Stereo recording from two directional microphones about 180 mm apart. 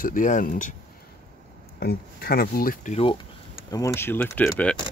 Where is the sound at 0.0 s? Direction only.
50° left (ahead or behind).